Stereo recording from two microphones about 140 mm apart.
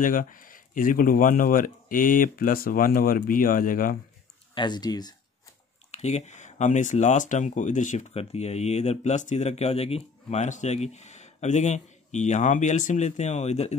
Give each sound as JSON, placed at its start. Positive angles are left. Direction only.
{"t": 0.0, "sound": "speech", "side_deg": 75}
{"t": 4.6, "sound": "speech", "side_deg": 30}
{"t": 5.9, "sound": "speech", "side_deg": 50}